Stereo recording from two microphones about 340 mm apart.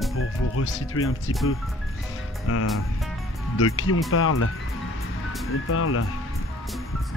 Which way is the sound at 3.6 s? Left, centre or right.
Left.